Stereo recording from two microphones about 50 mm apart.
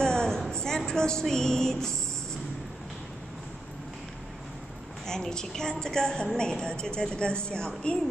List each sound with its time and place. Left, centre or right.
0.0 s a sound: centre
0.5 s speech: centre
5.0 s a woman's voice: centre